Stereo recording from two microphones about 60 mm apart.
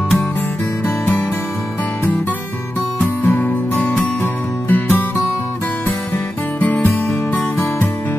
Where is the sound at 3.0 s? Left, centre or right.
Left.